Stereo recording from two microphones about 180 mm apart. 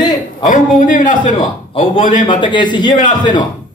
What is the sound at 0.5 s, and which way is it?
Speech, 45° left (ahead or behind).